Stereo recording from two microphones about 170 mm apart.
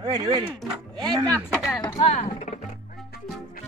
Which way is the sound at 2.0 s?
40° left (ahead or behind).